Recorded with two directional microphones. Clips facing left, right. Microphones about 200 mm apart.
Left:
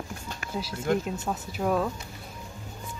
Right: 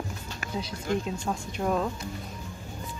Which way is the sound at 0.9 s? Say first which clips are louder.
Left 3 dB; 55° left (ahead or behind).